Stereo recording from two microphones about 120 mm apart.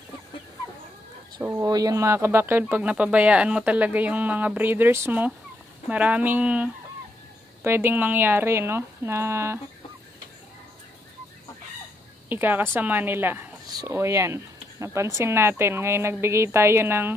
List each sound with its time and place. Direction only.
1.4 s speech: 30° right (ahead or behind)
12.3 s speech: 15° right (ahead or behind)
13.7 s speech: 25° right (ahead or behind)